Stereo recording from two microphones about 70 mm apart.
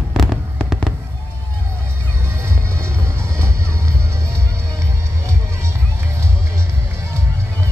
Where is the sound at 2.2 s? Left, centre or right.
Right.